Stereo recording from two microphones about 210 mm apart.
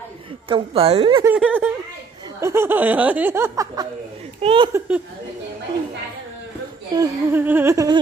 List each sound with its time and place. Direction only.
0.5 s a woman's voice: 25° right (ahead or behind)
1.2 s laughter: 5° right (ahead or behind)
4.4 s a woman's voice: 25° right (ahead or behind)
4.7 s laughter: 10° right (ahead or behind)
7.0 s laughter: 10° right (ahead or behind)